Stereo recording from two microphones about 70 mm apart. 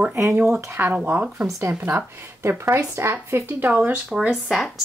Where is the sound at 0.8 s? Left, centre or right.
Right.